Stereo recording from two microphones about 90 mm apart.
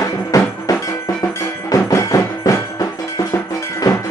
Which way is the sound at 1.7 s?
35° left (ahead or behind).